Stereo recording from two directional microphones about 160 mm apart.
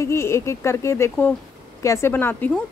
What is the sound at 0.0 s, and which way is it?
A woman's voice, 15° left (ahead or behind).